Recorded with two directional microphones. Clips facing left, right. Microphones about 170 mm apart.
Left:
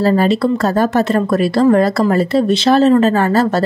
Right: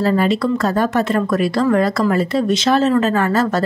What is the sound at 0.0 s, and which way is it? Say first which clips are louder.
Speech: left 3 dB; 35° left (ahead or behind).